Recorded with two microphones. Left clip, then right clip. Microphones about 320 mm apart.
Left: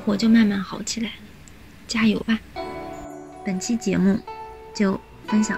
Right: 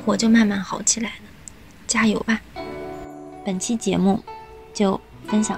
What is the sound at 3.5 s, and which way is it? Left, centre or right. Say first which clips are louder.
Speech: right 1 dB; centre.